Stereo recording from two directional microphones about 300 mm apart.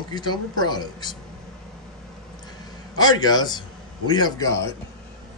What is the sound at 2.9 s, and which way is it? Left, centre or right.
Speech, centre.